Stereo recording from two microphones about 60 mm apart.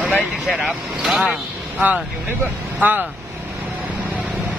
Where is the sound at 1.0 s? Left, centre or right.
Centre.